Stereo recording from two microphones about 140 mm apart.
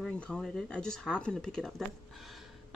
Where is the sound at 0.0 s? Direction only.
5° left (ahead or behind).